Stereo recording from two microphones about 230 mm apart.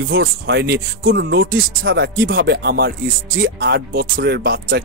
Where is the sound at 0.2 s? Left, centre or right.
Right.